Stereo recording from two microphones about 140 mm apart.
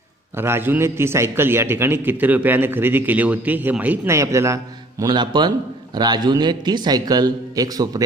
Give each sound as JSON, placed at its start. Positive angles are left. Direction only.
{"t": 0.4, "sound": "a man's voice", "side_deg": -15}